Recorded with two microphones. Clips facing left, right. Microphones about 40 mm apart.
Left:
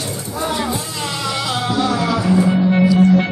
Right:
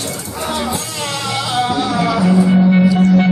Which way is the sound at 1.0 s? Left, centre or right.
Centre.